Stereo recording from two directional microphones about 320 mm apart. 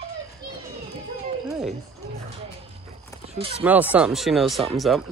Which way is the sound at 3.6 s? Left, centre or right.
Centre.